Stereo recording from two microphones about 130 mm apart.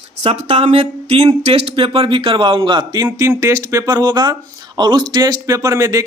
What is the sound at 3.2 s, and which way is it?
Speech, 25° right (ahead or behind).